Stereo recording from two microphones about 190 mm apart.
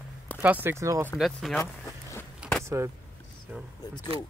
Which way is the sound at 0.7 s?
15° right (ahead or behind).